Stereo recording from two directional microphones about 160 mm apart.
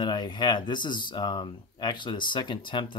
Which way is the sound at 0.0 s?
25° left (ahead or behind).